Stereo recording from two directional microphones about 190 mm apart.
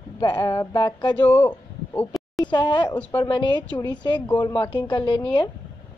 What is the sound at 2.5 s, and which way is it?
Speech, 25° left (ahead or behind).